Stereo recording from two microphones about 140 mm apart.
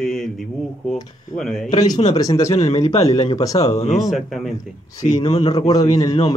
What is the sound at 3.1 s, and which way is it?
Speech, 25° left (ahead or behind).